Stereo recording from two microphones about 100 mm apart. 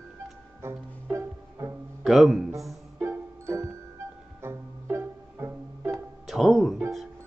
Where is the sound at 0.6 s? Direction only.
30° right (ahead or behind).